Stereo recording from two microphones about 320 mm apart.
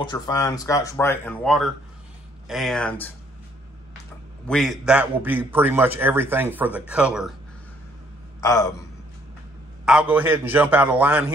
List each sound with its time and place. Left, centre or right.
0.0 s a man's voice: centre
4.5 s a man's voice: centre
8.4 s a man's voice: centre
9.8 s a man's voice: centre